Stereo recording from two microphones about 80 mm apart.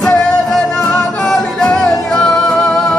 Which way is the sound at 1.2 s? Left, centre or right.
Centre.